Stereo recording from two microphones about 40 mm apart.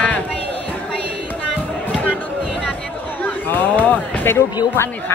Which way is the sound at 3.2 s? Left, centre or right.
Left.